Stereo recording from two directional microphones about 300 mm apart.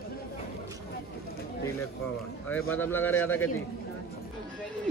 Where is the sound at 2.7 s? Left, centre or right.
Centre.